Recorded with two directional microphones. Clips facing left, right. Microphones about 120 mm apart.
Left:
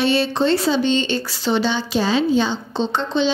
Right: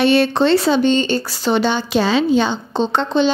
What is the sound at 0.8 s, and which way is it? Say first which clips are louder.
A woman's voice: right 4 dB; 50° right (ahead or behind).